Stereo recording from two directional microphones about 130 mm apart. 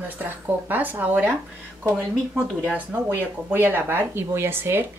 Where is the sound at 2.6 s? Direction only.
10° right (ahead or behind).